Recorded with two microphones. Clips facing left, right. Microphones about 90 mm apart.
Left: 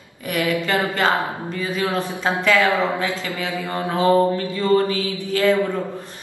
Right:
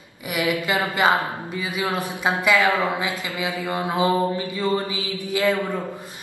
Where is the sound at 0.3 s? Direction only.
15° right (ahead or behind).